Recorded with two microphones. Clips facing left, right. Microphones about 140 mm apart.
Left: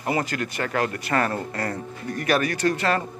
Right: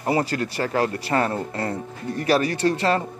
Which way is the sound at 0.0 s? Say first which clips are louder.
Right 3 dB; 30° right (ahead or behind).